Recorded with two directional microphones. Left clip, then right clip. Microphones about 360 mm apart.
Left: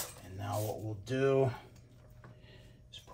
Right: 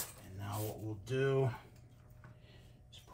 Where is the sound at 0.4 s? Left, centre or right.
Centre.